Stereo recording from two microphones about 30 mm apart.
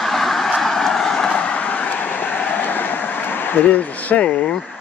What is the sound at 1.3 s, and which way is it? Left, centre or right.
Train, left.